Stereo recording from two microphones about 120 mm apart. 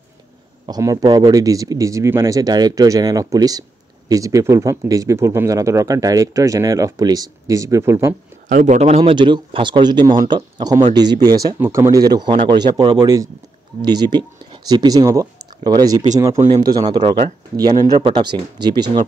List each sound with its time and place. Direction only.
0.7 s speech: 30° right (ahead or behind)
8.5 s speech: 85° right
9.0 s speech: 40° right (ahead or behind)
11.6 s speech: 20° right (ahead or behind)